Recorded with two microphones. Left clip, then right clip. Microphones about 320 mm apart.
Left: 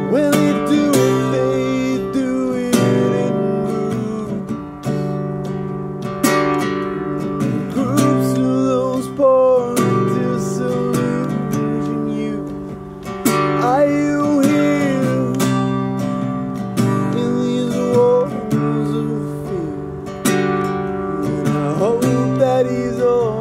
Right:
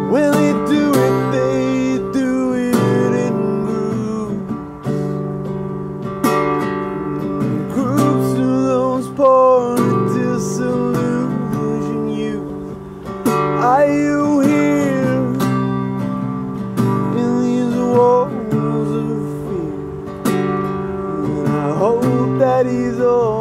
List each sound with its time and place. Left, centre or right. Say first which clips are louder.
0.1 s music: right 1 dB; centre
6.2 s music: even; left
8.4 s music: right 1 dB; centre
13.2 s music: even; left
13.6 s music: right 4 dB; centre
16.7 s music: right 1 dB; left
17.2 s music: right 1 dB; centre
20.2 s music: left 1 dB; left
21.5 s music: right 2 dB; centre